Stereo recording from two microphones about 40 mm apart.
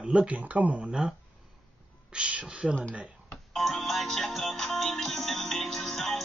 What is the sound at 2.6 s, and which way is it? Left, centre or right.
Speech, centre.